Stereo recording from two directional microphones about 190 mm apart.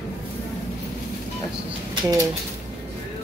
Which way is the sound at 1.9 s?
20° right (ahead or behind).